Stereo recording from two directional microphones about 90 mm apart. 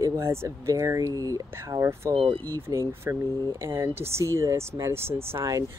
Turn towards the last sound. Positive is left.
turn(degrees=-30)  # may be behind; listen again after turning